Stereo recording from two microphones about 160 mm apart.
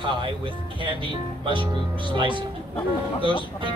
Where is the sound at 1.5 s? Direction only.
30° right (ahead or behind).